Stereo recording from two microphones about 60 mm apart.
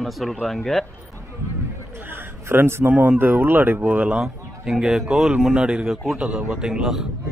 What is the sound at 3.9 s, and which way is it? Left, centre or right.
Speech, centre.